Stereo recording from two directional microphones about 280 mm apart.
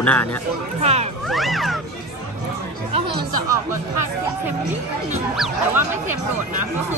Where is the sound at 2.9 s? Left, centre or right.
Centre.